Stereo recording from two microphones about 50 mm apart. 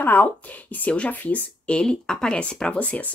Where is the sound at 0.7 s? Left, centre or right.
Left.